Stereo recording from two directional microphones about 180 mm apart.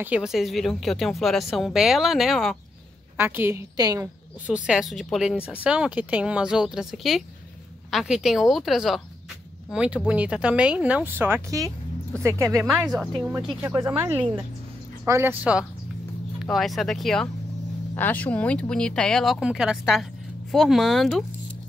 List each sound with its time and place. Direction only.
0.0 s a woman's voice: 5° right (ahead or behind)
3.2 s speech: 10° right (ahead or behind)
4.5 s a woman's voice: 5° right (ahead or behind)
16.4 s a woman's voice: centre (ahead or behind)